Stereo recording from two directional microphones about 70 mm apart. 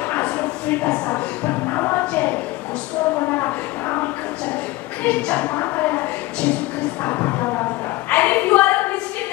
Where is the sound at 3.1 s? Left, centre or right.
Left.